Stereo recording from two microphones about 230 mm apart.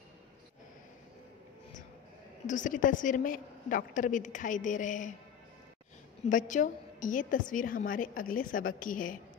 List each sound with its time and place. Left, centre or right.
2.4 s a woman's voice: left
6.2 s a woman's voice: left